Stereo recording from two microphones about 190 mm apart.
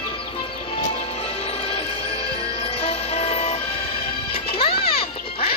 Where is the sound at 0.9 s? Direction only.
30° left (ahead or behind).